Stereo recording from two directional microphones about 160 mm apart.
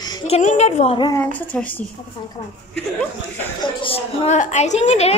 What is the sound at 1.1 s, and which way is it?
Speech, 10° left (ahead or behind).